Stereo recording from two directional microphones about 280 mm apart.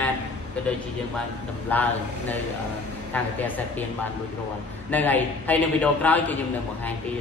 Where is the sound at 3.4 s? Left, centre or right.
Centre.